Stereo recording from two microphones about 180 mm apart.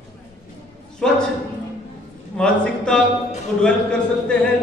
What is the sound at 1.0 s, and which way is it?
Speech, 5° left (ahead or behind).